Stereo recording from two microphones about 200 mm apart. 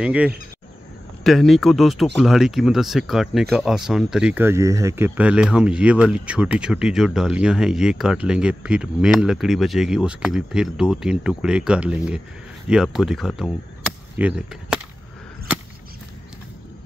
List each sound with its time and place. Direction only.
0.0 s speech: 5° right (ahead or behind)